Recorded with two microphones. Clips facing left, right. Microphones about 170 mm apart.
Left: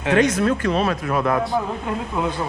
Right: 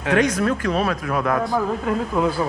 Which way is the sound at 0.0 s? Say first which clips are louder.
Left 1 dB; 25° left (ahead or behind).